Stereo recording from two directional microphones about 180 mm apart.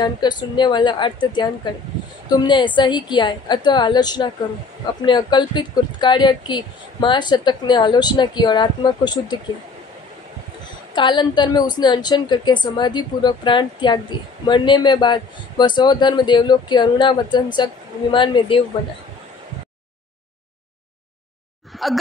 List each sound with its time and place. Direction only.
0.0 s speech: 25° left (ahead or behind)
11.0 s speech: 25° left (ahead or behind)
21.8 s speech: centre (ahead or behind)